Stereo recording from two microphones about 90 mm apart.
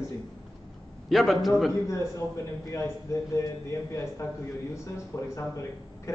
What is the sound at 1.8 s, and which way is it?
A man's voice, 35° left (ahead or behind).